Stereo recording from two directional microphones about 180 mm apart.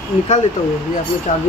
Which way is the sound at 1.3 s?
45° left (ahead or behind).